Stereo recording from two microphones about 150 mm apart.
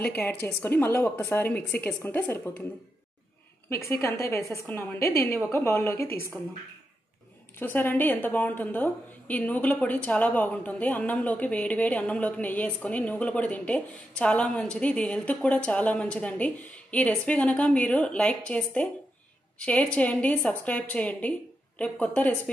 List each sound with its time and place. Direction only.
0.2 s a woman's voice: 10° left (ahead or behind)
3.7 s a woman's voice: 20° left (ahead or behind)
7.5 s a woman's voice: 10° left (ahead or behind)